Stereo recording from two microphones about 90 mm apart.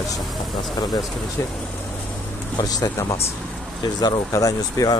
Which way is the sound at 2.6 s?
45° left (ahead or behind).